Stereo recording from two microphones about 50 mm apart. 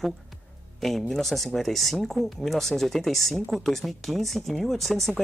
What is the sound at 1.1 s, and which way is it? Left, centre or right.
Speech, centre.